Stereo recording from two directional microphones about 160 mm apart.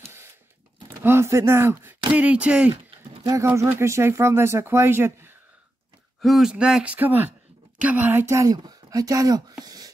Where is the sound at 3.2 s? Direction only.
20° right (ahead or behind).